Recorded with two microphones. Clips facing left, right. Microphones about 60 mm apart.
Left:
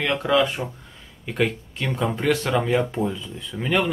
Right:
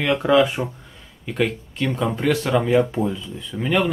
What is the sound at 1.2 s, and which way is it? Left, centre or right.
Speech, centre.